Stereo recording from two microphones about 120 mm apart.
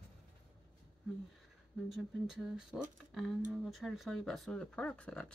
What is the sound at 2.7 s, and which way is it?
Speech, centre (ahead or behind).